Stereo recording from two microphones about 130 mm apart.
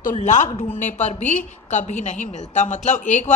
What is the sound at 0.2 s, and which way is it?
A woman's voice, 70° left (ahead or behind).